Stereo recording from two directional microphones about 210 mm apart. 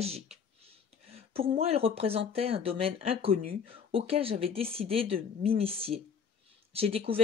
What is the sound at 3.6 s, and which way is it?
Speech, 25° right (ahead or behind).